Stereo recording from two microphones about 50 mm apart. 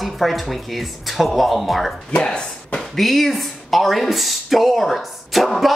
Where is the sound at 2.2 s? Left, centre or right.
Centre.